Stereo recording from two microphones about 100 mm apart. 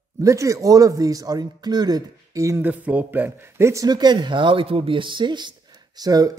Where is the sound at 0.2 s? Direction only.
30° right (ahead or behind).